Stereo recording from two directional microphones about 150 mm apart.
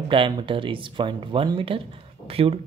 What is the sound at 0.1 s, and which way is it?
Speech, 35° right (ahead or behind).